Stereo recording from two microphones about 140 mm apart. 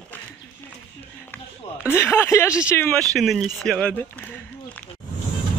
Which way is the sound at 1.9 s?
15° left (ahead or behind).